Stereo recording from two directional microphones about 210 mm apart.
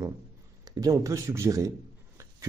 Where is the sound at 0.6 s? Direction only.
15° right (ahead or behind).